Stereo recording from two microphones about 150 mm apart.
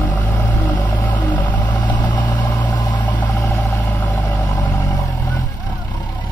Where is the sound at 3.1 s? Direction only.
15° left (ahead or behind).